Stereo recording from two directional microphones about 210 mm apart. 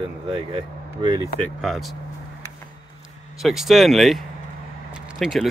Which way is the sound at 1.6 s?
Centre (ahead or behind).